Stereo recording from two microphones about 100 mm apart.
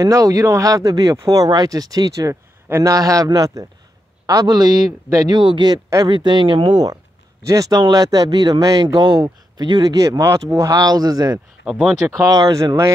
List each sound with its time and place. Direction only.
0.0 s a man's voice: 35° right (ahead or behind); by 6.9 s 55° right (ahead or behind)
7.4 s speech: 35° right (ahead or behind)
11.6 s speech: 5° right (ahead or behind)
12.2 s speech: 40° right (ahead or behind)